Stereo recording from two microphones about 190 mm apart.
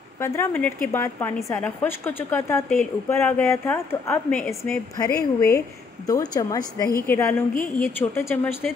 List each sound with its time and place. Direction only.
0.2 s a woman's voice: 10° left (ahead or behind)
4.9 s a woman's voice: 15° left (ahead or behind)